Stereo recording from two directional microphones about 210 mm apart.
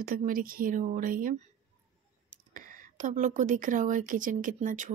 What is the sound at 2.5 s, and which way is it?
Speech, 40° right (ahead or behind).